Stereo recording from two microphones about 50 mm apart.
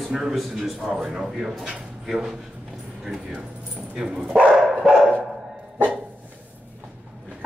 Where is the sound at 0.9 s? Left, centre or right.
Centre.